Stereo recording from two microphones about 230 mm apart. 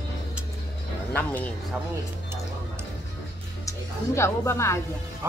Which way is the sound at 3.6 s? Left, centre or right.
Centre.